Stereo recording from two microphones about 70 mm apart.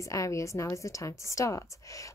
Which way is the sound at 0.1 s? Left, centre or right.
Left.